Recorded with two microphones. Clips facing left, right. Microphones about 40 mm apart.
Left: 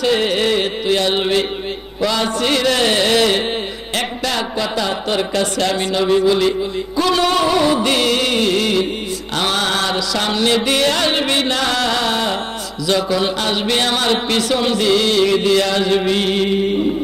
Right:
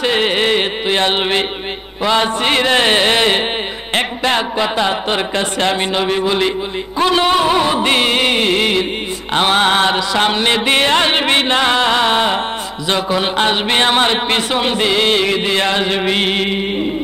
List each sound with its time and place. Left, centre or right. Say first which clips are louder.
0.0 s music: right 1 dB; right
2.0 s speech: right 3 dB; right